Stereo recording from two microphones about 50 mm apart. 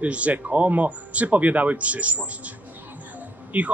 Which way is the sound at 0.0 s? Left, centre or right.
Right.